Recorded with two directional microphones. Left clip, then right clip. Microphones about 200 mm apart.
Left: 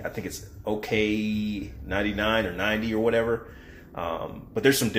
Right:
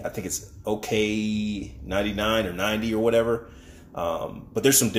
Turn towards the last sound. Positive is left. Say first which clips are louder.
# right 1 dB
turn(degrees=-30)  # may be behind; listen again after turning